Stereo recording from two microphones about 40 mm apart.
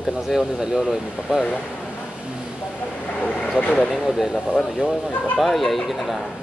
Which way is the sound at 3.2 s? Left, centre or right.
Left.